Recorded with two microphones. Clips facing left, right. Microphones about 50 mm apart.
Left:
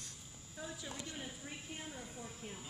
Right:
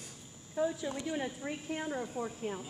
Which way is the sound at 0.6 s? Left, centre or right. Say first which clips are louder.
Right 13 dB; right.